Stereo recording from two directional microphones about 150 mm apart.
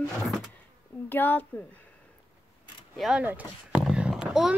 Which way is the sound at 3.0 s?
5° right (ahead or behind).